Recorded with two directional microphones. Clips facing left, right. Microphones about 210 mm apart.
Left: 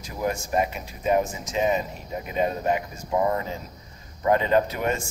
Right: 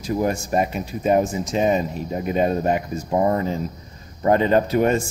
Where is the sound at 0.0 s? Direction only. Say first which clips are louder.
Right 6 dB; 35° right (ahead or behind).